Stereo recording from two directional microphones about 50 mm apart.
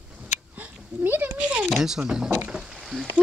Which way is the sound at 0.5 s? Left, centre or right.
Right.